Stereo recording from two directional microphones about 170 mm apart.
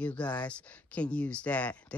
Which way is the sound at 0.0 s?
10° left (ahead or behind).